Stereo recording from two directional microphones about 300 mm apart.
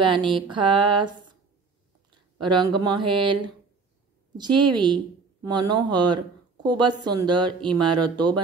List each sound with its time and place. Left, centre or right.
0.0 s speech: centre
2.3 s speech: centre